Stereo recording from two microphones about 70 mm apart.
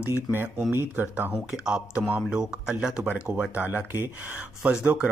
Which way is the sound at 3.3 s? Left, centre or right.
Right.